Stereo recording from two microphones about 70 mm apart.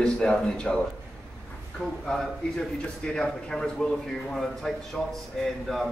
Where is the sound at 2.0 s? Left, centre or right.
Centre.